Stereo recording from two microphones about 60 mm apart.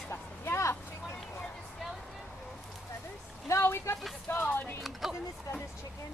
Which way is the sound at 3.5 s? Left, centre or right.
Left.